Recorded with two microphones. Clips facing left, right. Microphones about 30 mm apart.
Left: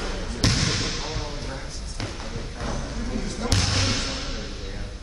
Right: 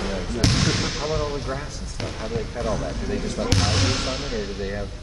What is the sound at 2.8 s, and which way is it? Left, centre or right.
Speech, right.